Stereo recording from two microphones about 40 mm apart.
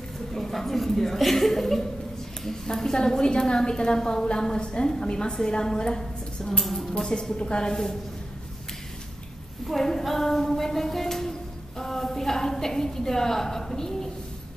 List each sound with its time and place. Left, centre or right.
0.3 s chuckle: centre
2.4 s a woman's voice: centre
6.6 s a woman's voice: centre
9.7 s a woman's voice: centre